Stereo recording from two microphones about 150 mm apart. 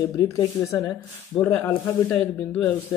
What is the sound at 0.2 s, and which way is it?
Speech, 25° left (ahead or behind).